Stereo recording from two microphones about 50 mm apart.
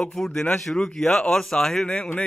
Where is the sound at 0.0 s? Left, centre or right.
Centre.